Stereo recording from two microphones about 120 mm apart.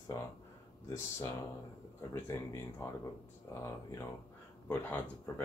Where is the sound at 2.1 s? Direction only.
25° left (ahead or behind).